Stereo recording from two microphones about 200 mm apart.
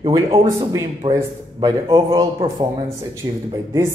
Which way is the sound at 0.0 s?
30° right (ahead or behind).